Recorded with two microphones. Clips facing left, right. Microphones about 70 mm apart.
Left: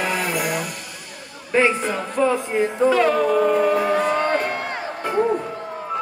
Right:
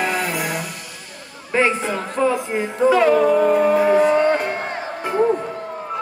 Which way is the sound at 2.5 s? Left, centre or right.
Centre.